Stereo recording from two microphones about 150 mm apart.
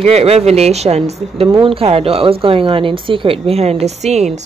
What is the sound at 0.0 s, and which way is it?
A woman's voice, 45° right (ahead or behind).